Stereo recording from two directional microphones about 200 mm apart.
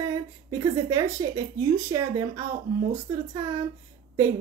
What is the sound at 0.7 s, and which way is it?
Speech, 15° right (ahead or behind).